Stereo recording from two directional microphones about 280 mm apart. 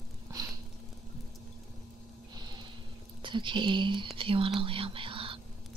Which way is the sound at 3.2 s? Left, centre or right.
Centre.